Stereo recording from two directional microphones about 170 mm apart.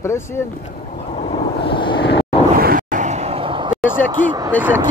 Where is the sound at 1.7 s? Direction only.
30° left (ahead or behind).